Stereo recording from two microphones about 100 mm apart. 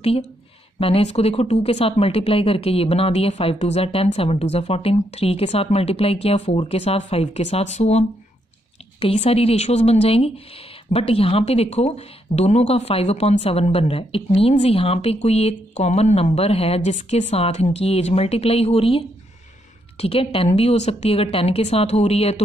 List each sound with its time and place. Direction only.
0.7 s speech: 70° left (ahead or behind); by 8.0 s 90° left
9.0 s speech: 85° left